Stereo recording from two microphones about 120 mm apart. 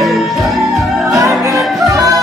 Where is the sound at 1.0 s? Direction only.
30° right (ahead or behind).